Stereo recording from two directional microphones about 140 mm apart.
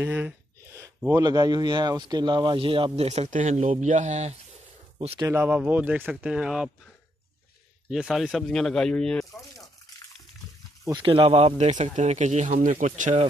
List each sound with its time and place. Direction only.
0.0 s speech: 10° right (ahead or behind)
0.7 s a sound: 20° right (ahead or behind)
1.1 s speech: 30° right (ahead or behind); by 4.4 s 55° right (ahead or behind)
5.2 s speech: 15° right (ahead or behind)
7.9 s speech: centre (ahead or behind)
10.9 s speech: 35° right (ahead or behind); by 13.2 s 60° right (ahead or behind)